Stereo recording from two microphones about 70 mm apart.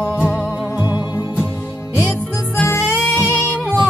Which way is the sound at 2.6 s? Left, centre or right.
Left.